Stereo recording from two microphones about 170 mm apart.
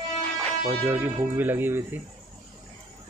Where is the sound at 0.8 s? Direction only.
10° right (ahead or behind).